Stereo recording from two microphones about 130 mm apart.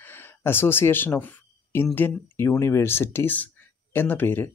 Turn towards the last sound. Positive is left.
turn(degrees=15)  # may be behind; listen again after turning